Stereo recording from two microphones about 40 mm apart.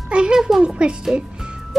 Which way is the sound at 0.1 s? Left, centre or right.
Right.